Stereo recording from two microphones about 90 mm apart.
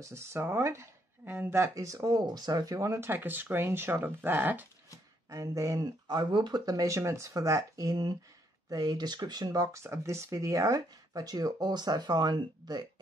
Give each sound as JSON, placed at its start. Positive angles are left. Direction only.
{"t": 0.0, "sound": "speech", "side_deg": -30}
{"t": 5.3, "sound": "speech", "side_deg": -35}
{"t": 6.0, "sound": "speech", "side_deg": -55}